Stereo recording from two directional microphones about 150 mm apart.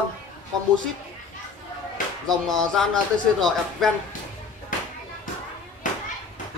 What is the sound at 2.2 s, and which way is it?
Speech, centre (ahead or behind).